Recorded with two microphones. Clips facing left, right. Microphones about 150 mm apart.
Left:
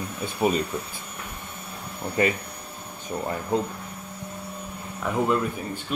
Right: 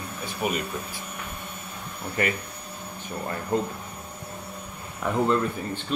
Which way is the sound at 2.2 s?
20° left (ahead or behind).